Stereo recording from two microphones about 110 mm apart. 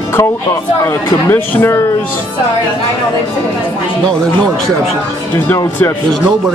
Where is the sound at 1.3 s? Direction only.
25° left (ahead or behind).